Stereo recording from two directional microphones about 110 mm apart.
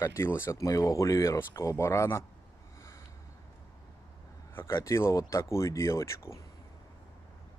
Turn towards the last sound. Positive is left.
turn(degrees=25)  # may be behind; listen again after turning